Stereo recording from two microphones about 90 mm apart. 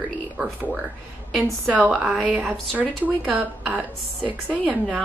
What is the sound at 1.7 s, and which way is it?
A woman's voice, 15° right (ahead or behind).